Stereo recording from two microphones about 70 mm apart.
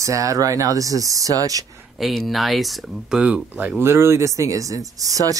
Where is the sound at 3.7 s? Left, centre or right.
Right.